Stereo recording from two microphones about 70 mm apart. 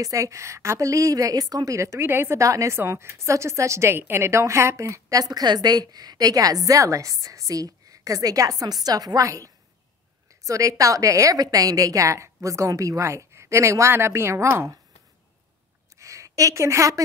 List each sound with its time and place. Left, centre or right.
0.0 s a woman's voice: right
2.3 s a woman's voice: right
5.2 s a woman's voice: right
16.0 s a woman's voice: right